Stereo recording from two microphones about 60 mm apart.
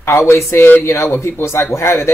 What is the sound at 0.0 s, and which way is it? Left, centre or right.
A man's voice, left.